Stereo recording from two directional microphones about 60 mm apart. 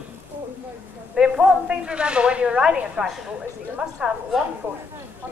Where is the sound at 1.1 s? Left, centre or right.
Centre.